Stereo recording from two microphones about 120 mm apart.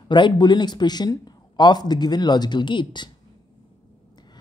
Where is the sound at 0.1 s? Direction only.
40° left (ahead or behind).